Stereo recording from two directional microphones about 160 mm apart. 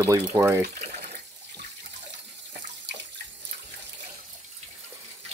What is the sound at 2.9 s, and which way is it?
Bathtub, 90° right.